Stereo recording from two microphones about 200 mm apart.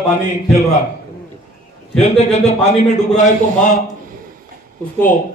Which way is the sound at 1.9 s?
35° left (ahead or behind).